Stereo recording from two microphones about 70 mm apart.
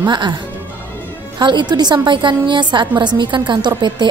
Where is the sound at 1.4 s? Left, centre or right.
Right.